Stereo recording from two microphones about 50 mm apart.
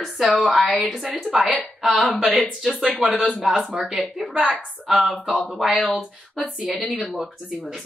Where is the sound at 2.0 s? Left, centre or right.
Centre.